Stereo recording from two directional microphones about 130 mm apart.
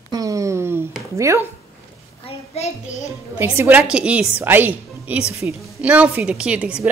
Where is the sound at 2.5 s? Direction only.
55° left (ahead or behind).